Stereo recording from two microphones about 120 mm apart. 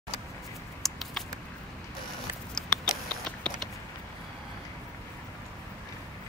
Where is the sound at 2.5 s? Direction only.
5° left (ahead or behind).